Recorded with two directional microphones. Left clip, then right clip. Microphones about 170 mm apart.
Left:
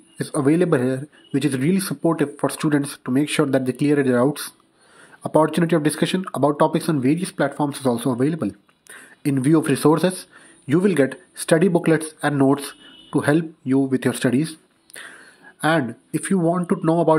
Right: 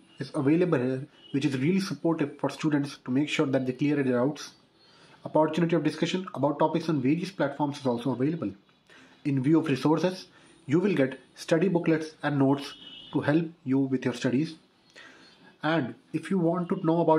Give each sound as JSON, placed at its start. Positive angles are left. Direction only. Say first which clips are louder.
{"t": 0.2, "sound": "speech", "louder": "left 6 dB", "side_deg": 35}